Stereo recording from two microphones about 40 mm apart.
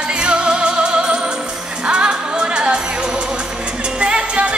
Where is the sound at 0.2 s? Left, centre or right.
Right.